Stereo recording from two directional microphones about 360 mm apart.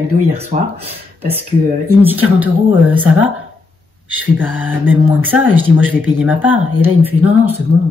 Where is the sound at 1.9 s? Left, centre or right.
Centre.